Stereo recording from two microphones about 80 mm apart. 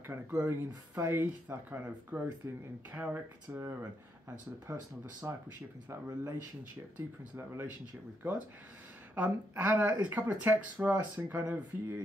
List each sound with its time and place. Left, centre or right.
0.0 s speech: right
2.4 s speech: right
2.9 s speech: right
4.7 s speech: right
7.0 s speech: right
9.1 s speech: right